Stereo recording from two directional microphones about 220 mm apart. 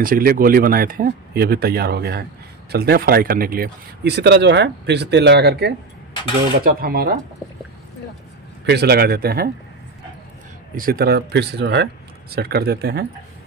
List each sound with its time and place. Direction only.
0.0 s speech: 40° right (ahead or behind)
8.6 s speech: 45° right (ahead or behind)
10.8 s speech: 40° right (ahead or behind)